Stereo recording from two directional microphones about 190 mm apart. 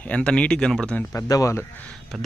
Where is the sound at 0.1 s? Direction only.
5° left (ahead or behind).